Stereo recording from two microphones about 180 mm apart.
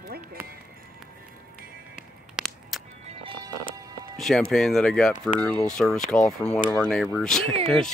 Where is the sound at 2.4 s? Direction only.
Centre (ahead or behind).